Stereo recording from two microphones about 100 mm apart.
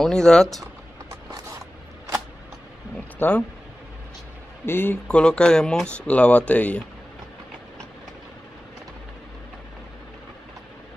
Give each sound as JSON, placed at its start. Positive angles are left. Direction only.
{"t": 0.0, "sound": "speech", "side_deg": 5}
{"t": 3.2, "sound": "speech", "side_deg": 15}
{"t": 4.6, "sound": "a man's voice", "side_deg": 20}
{"t": 5.0, "sound": "speech", "side_deg": 10}